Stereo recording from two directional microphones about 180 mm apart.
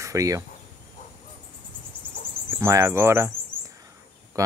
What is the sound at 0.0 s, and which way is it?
Speech, 15° right (ahead or behind).